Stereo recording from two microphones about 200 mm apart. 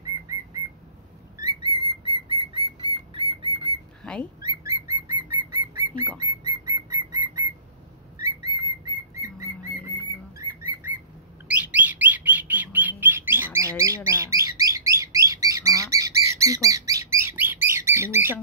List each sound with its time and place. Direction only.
1.4 s bird: 25° right (ahead or behind)
4.0 s bird: 5° left (ahead or behind)
4.4 s bird: 15° right (ahead or behind)
8.2 s whistle: 15° right (ahead or behind)
9.9 s bird: 15° right (ahead or behind)